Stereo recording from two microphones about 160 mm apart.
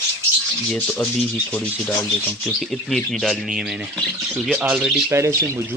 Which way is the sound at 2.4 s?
Centre (ahead or behind).